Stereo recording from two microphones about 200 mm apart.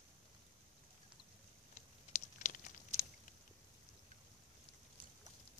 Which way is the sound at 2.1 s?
35° left (ahead or behind).